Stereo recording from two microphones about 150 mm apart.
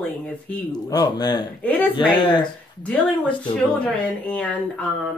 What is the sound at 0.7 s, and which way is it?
Speech, 25° left (ahead or behind).